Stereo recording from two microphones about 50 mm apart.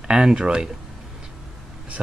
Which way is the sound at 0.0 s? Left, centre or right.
Centre.